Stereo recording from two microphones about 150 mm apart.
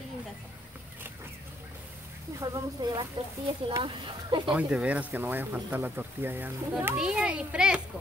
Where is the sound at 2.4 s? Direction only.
25° right (ahead or behind).